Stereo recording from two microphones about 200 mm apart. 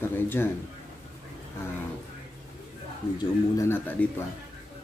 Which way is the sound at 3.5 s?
10° left (ahead or behind).